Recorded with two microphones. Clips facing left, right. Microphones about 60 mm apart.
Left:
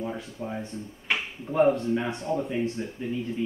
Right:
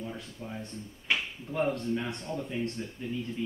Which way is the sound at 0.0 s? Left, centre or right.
Left.